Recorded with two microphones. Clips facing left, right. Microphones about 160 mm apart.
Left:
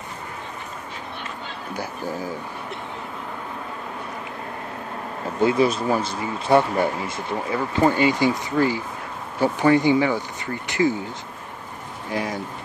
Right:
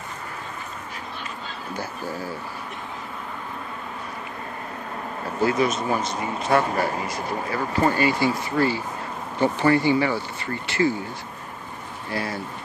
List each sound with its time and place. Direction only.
1.7 s speech: 15° left (ahead or behind)
5.4 s speech: 25° left (ahead or behind)
7.7 s speech: 20° left (ahead or behind)
12.1 s speech: 15° left (ahead or behind)